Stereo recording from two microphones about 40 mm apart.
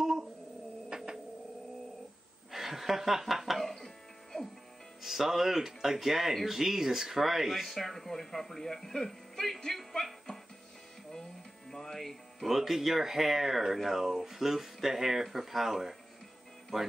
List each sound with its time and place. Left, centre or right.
0.0 s a sound: centre
2.5 s music: centre
5.0 s speech: centre
11.7 s speech: centre